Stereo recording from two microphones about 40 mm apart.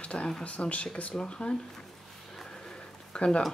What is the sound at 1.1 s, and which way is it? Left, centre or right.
Speech, left.